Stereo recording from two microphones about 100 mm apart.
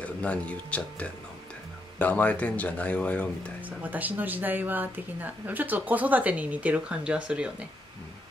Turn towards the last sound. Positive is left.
turn(degrees=-10)  # may be behind; listen again after turning